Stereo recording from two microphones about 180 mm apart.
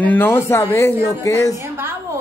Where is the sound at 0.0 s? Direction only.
10° left (ahead or behind).